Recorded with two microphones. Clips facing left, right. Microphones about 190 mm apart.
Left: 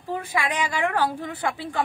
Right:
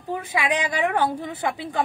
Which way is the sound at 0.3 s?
15° right (ahead or behind).